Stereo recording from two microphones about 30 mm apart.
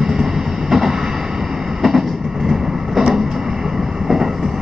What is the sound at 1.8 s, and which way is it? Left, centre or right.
Vehicle, centre.